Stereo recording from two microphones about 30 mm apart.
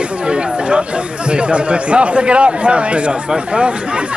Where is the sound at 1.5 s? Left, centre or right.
Right.